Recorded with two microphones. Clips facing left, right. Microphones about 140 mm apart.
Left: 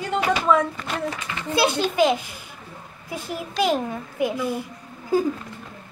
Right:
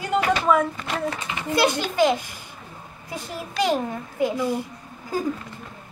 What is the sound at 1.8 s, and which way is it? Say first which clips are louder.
Speech: left 1 dB; 15° left (ahead or behind).